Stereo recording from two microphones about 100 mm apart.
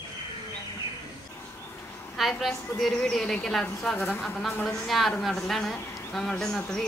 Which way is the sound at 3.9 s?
20° left (ahead or behind).